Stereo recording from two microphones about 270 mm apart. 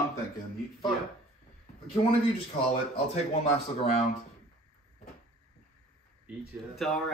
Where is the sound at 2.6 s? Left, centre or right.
Left.